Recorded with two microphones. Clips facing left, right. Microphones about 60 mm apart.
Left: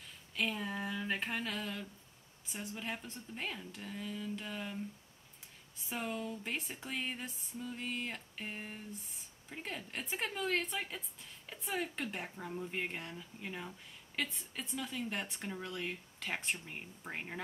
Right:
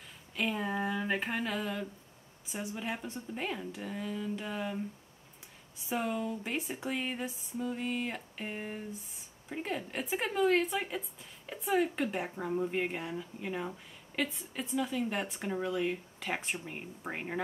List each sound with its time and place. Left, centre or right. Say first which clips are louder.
0.4 s a sound: right 4 dB; centre
2.4 s speech: right 5 dB; centre
5.8 s speech: right 6 dB; centre
12.3 s speech: right 9 dB; centre
12.7 s speech: right 7 dB; centre